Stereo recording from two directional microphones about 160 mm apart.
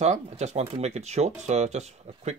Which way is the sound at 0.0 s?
45° right (ahead or behind).